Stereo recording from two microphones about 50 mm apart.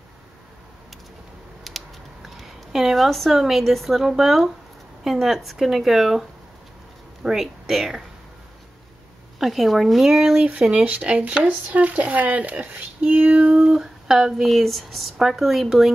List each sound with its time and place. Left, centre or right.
1.7 s typing: centre
2.2 s a woman's voice: centre
7.2 s speech: centre
9.4 s speech: centre